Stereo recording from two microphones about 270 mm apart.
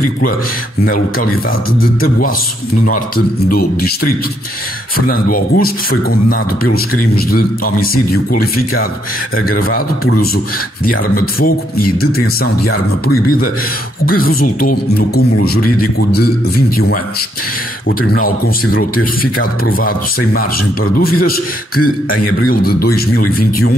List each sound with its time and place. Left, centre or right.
0.8 s speech: left
3.5 s speech: left
18.2 s speech: left
22.1 s a man's voice: left
22.5 s speech: left